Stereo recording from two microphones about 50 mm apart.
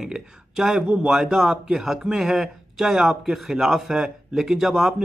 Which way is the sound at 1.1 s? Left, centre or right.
Centre.